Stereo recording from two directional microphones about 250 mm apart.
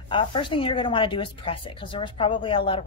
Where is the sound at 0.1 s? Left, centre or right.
Centre.